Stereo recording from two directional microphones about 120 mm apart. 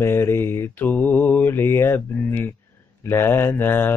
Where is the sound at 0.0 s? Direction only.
20° left (ahead or behind).